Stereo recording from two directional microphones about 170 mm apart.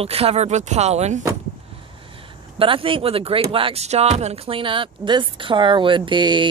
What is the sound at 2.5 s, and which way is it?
Speech, 30° right (ahead or behind).